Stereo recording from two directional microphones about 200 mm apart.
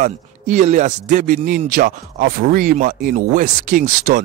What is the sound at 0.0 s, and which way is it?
Speech, 40° right (ahead or behind).